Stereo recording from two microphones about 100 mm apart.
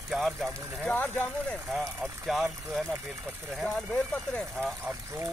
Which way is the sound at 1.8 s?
Centre (ahead or behind).